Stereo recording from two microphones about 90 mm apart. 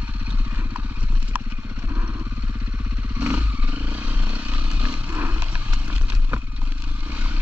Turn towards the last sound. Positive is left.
turn(degrees=-20)  # may be behind; listen again after turning